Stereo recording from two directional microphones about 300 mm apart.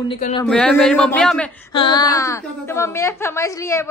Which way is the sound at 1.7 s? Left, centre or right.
Centre.